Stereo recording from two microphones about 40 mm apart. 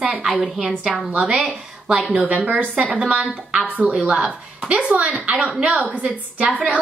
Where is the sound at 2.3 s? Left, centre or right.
Right.